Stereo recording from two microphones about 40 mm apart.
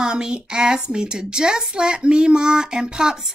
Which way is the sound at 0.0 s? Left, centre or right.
Centre.